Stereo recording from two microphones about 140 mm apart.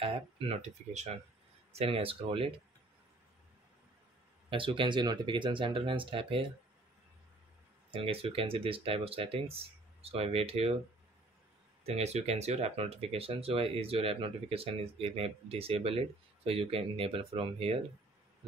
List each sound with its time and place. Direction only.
0.0 s speech: 40° right (ahead or behind)
4.5 s speech: 35° right (ahead or behind)
7.9 s speech: 40° right (ahead or behind)
11.8 s speech: 50° right (ahead or behind)